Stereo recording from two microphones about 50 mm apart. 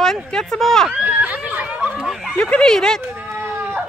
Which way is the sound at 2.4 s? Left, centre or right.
Centre.